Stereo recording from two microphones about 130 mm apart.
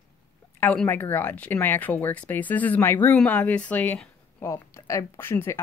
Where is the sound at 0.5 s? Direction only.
15° left (ahead or behind).